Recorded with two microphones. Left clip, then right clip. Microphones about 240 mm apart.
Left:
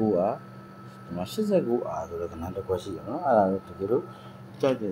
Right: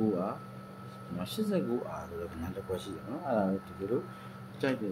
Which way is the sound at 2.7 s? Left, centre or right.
Centre.